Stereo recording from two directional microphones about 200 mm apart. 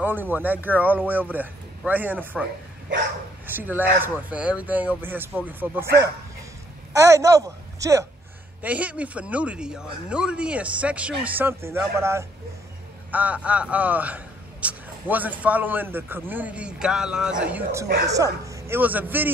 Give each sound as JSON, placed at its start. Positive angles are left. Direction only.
{"t": 0.0, "sound": "a man's voice", "side_deg": -10}
{"t": 3.4, "sound": "a man's voice", "side_deg": -10}
{"t": 6.9, "sound": "a man's voice", "side_deg": -15}
{"t": 17.8, "sound": "a woman's voice", "side_deg": -50}
{"t": 18.1, "sound": "a man's voice", "side_deg": -15}